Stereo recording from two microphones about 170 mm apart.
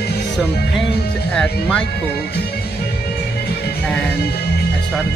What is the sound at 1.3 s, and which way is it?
Speech, 5° left (ahead or behind).